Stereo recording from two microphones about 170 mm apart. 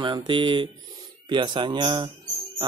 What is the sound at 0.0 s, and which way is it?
Speech, 30° right (ahead or behind).